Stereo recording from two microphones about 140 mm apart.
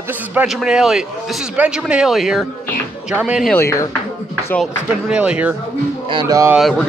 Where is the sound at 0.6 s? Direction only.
5° right (ahead or behind).